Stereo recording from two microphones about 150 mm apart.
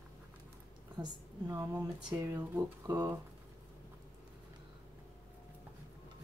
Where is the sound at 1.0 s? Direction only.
20° right (ahead or behind).